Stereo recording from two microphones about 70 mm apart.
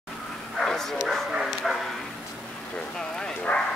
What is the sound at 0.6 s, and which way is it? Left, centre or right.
Speech, centre.